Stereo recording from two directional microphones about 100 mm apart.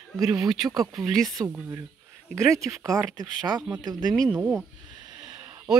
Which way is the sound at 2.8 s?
40° right (ahead or behind).